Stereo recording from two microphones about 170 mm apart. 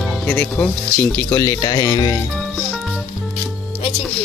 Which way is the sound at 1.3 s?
20° left (ahead or behind).